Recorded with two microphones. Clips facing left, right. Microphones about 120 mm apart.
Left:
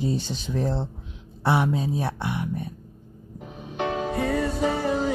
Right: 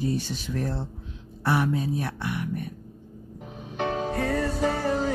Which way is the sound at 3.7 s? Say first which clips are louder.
Left 1 dB; 15° left (ahead or behind).